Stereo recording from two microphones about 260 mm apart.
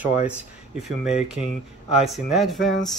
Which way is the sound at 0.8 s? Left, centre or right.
Centre.